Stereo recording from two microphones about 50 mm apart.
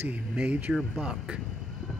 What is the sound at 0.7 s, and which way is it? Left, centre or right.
Speech, centre.